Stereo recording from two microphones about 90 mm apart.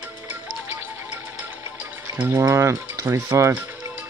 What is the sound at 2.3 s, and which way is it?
Speech, 35° right (ahead or behind).